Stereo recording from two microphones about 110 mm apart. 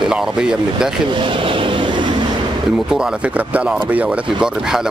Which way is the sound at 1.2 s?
50° right (ahead or behind).